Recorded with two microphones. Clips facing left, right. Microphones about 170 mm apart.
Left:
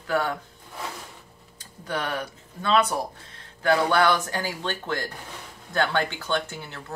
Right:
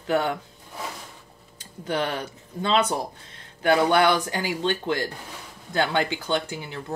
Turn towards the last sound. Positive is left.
turn(degrees=-15)  # may be behind; listen again after turning